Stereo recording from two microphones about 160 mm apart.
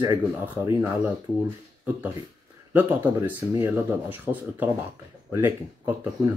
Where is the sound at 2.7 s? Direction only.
10° right (ahead or behind).